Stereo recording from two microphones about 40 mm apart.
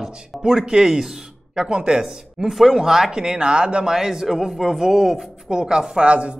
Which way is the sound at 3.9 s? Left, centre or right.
Centre.